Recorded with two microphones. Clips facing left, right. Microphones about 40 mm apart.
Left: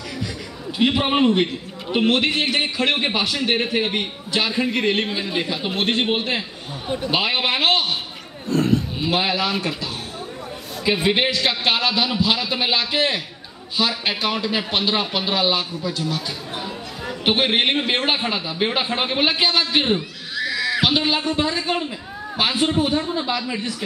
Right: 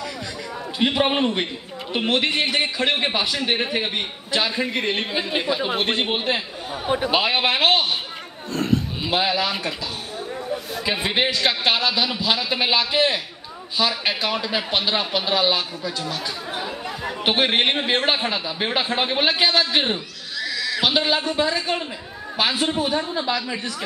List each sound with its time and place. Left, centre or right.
0.7 s a man's voice: centre
10.8 s a man's voice: centre
20.3 s a sound: centre
20.8 s a man's voice: centre